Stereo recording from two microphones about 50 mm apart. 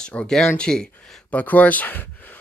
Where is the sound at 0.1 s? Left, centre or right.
Left.